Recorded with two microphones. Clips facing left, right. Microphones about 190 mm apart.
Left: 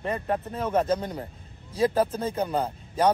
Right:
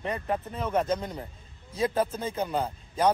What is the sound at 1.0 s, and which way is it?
A man's voice, 30° left (ahead or behind).